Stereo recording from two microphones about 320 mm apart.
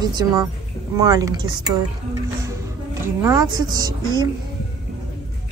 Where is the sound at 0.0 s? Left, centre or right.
Centre.